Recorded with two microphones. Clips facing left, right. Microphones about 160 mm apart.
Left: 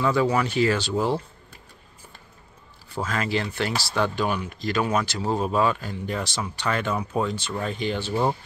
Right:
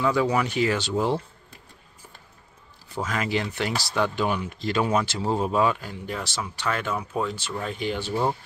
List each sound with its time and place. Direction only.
0.0 s speech: 10° right (ahead or behind)
2.9 s speech: 15° right (ahead or behind)
8.1 s speech: 10° left (ahead or behind)